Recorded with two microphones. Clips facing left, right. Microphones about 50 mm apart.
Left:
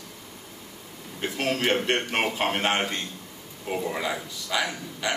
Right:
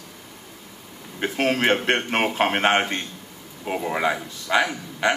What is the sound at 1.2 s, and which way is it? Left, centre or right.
A man's voice, right.